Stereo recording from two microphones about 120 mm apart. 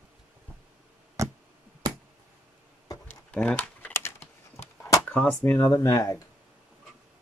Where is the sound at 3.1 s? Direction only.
10° left (ahead or behind).